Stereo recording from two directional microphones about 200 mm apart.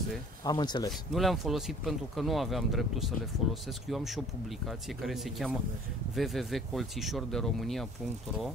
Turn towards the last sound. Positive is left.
turn(degrees=0)  # may be behind; listen again after turning